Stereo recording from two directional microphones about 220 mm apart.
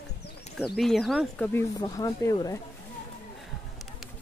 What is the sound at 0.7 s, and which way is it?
Speech, centre (ahead or behind).